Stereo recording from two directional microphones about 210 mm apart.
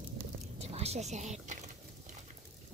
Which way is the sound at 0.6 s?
30° right (ahead or behind).